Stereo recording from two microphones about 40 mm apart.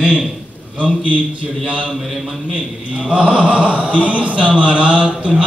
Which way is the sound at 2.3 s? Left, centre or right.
Right.